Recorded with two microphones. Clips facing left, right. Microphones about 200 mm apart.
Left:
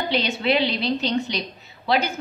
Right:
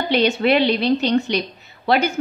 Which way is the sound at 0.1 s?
60° right (ahead or behind).